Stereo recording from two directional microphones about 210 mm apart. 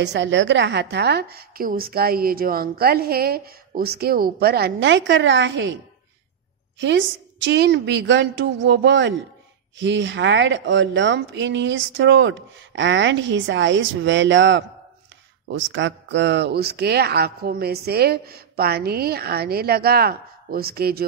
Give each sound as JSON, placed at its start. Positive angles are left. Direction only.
{"t": 0.0, "sound": "a woman's voice", "side_deg": -55}
{"t": 6.8, "sound": "a woman's voice", "side_deg": -60}